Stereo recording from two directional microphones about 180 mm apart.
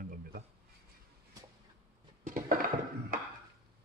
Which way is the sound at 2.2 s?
50° right (ahead or behind).